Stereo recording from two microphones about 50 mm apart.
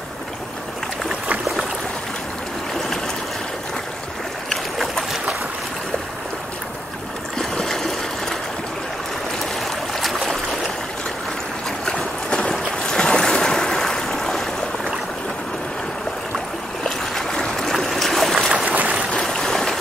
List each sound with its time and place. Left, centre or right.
4.5 s boat: centre
7.3 s stream: centre
9.9 s boat: centre
11.8 s boat: centre
16.8 s boat: centre
18.7 s a sound: right
19.2 s stream: centre